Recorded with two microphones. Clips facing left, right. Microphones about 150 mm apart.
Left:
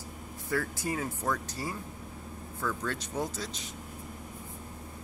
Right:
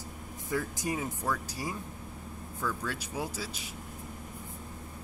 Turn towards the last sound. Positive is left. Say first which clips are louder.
# left 1 dB
turn(degrees=-5)  # may be behind; listen again after turning